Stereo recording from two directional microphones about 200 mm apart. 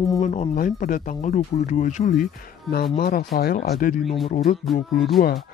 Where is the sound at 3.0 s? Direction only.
50° left (ahead or behind).